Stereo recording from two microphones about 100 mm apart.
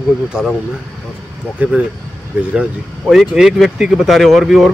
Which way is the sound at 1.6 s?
15° right (ahead or behind).